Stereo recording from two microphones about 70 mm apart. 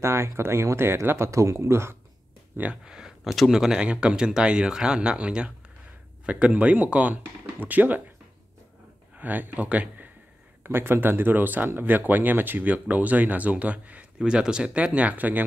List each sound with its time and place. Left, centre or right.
0.0 s speech: right
2.7 s speech: centre
9.1 s speech: right
10.6 s speech: right